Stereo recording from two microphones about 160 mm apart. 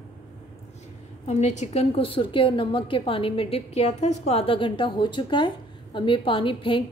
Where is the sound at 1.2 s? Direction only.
45° left (ahead or behind).